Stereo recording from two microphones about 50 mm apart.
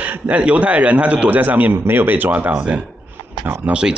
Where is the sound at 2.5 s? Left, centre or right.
Right.